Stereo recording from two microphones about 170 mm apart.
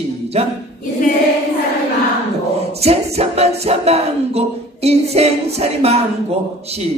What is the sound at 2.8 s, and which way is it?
Music, 40° right (ahead or behind).